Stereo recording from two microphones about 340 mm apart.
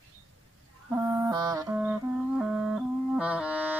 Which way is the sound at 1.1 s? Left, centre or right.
Centre.